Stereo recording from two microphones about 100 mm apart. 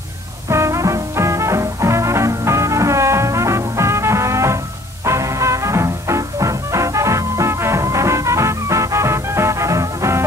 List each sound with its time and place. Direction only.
0.5 s music: 30° right (ahead or behind)